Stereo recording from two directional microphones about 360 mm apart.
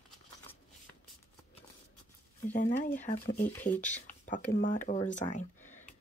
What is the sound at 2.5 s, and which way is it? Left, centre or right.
Speech, left.